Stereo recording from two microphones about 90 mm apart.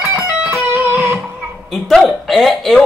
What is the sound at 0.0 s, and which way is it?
Music, 15° right (ahead or behind).